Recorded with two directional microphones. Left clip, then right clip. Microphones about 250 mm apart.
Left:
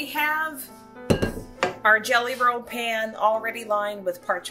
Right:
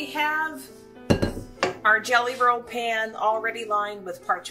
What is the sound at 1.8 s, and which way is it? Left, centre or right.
Speech, left.